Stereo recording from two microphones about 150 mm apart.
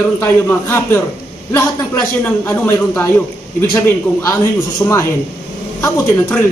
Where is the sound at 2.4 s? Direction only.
15° left (ahead or behind).